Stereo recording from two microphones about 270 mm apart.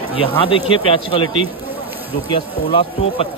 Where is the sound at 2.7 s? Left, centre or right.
Centre.